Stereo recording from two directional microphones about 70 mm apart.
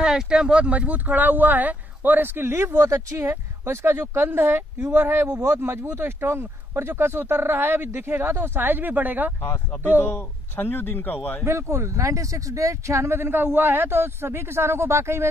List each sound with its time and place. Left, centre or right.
0.0 s speech: centre; by 9.3 s right
10.5 s speech: left
11.4 s speech: right